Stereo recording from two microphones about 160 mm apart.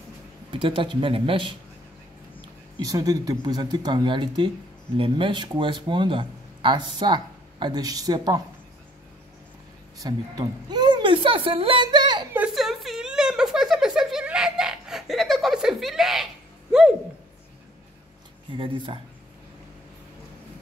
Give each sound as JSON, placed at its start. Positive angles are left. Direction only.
{"t": 0.5, "sound": "speech", "side_deg": -30}
{"t": 2.8, "sound": "speech", "side_deg": -25}
{"t": 9.9, "sound": "a woman's voice", "side_deg": -25}
{"t": 12.4, "sound": "a sound", "side_deg": 0}
{"t": 18.6, "sound": "speech", "side_deg": -30}